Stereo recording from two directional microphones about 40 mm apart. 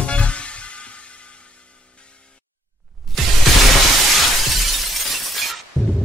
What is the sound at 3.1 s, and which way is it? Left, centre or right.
Music, centre.